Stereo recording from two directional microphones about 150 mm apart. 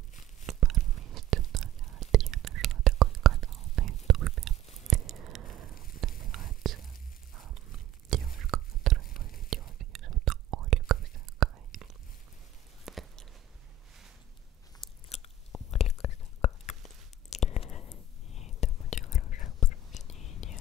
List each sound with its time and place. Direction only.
0.5 s whispering: centre (ahead or behind)
4.8 s a sound: centre (ahead or behind)
5.9 s whispering: centre (ahead or behind)
7.3 s horse: centre (ahead or behind)
8.1 s whispering: centre (ahead or behind)
12.8 s chewing: centre (ahead or behind)
15.0 s biting: 40° left (ahead or behind)
15.7 s whispering: 45° left (ahead or behind)